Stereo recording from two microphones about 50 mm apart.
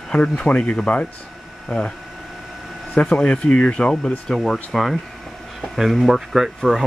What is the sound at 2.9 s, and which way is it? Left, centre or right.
Speech, left.